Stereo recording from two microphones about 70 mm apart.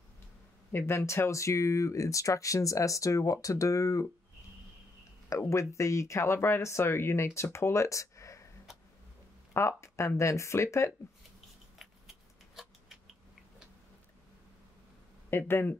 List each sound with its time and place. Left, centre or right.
0.7 s speech: left
5.3 s speech: left
9.5 s speech: left
15.2 s speech: left